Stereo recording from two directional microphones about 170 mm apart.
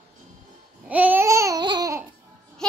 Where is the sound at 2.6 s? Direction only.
5° left (ahead or behind).